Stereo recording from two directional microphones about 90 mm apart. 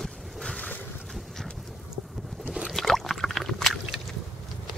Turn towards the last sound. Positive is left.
turn(degrees=0)  # may be behind; listen again after turning